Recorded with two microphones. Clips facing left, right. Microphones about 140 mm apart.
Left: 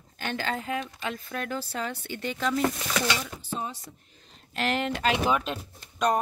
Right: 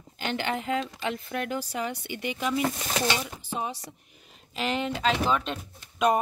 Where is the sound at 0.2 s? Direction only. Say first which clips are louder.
Right 1 dB; 20° right (ahead or behind).